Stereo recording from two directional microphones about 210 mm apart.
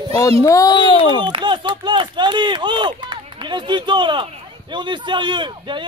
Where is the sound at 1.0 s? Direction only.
20° right (ahead or behind).